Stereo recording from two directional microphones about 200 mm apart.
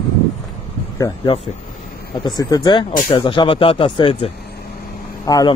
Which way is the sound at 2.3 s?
20° left (ahead or behind).